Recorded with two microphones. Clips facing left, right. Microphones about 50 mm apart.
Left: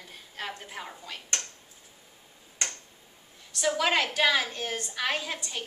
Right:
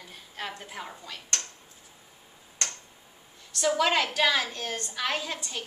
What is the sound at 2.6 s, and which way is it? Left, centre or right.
Tick-tock, centre.